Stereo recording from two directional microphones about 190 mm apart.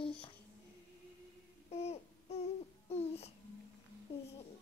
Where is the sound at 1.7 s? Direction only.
35° left (ahead or behind).